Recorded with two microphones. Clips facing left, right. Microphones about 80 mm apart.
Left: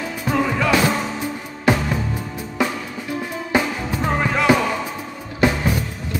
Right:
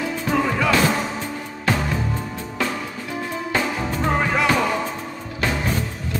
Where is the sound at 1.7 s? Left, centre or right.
Centre.